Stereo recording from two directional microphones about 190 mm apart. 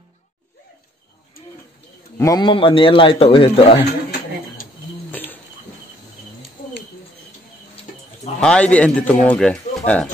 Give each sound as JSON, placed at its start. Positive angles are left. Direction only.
{"t": 2.1, "sound": "a man's voice", "side_deg": 20}
{"t": 5.1, "sound": "a sound", "side_deg": 10}
{"t": 7.9, "sound": "bird", "side_deg": 45}
{"t": 8.4, "sound": "a man's voice", "side_deg": 5}